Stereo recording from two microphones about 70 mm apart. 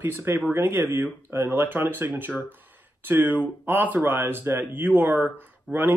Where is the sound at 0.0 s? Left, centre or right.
Right.